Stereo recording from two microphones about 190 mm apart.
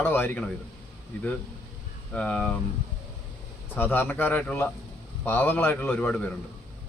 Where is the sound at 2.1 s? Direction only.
5° left (ahead or behind).